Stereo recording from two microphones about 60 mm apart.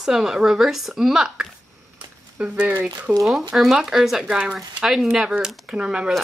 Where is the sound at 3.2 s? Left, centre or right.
Centre.